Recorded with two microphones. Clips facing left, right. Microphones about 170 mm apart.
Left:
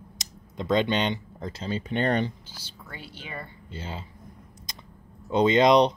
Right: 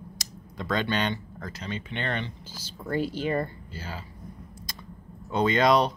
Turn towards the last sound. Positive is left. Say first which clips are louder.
# left 3 dB
turn(degrees=20)  # may be behind; listen again after turning